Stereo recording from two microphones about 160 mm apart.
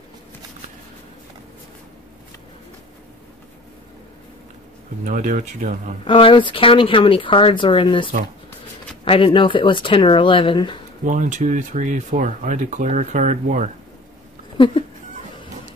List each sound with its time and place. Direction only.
5.0 s speech: 55° right (ahead or behind)
6.0 s speech: 30° left (ahead or behind)
11.1 s speech: 50° right (ahead or behind)
14.6 s speech: 30° left (ahead or behind)